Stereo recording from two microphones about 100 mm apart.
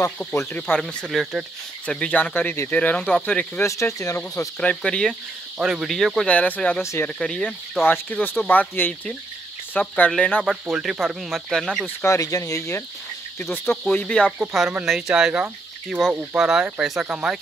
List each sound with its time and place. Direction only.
0.2 s speech: 20° left (ahead or behind)
0.7 s speech: 5° left (ahead or behind)
1.9 s speech: 10° left (ahead or behind)
3.6 s speech: 30° left (ahead or behind)
4.6 s speech: 10° left (ahead or behind)
5.6 s speech: 5° right (ahead or behind)
6.2 s speech: 15° left (ahead or behind)
6.8 s cricket: 30° left (ahead or behind)
7.2 s speech: 5° left (ahead or behind)
10.4 s speech: 5° right (ahead or behind)
12.0 s speech: 30° left (ahead or behind)
13.4 s cricket: 20° left (ahead or behind)
13.8 s speech: 10° left (ahead or behind)
14.5 s speech: 5° right (ahead or behind)